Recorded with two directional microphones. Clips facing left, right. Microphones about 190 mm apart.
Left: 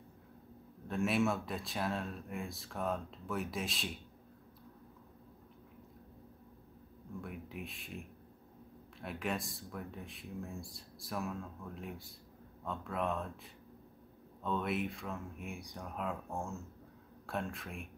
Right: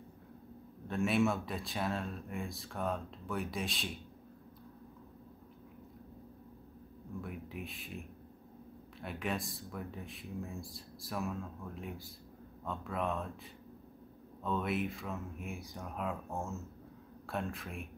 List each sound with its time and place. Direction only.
0.8 s speech: centre (ahead or behind)
7.2 s speech: centre (ahead or behind)